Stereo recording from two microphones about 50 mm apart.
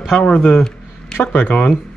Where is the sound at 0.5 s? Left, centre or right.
Centre.